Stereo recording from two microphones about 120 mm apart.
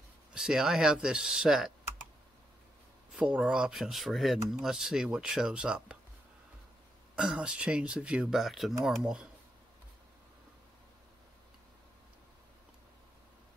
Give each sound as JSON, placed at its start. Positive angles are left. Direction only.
{"t": 0.3, "sound": "speech", "side_deg": -5}
{"t": 3.2, "sound": "speech", "side_deg": -5}
{"t": 7.2, "sound": "speech", "side_deg": -10}